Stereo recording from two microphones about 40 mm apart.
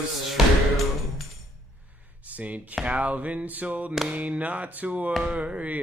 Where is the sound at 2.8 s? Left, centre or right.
Right.